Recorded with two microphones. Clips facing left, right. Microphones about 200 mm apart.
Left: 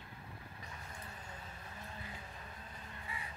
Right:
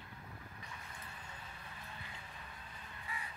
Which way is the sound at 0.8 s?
35° left (ahead or behind).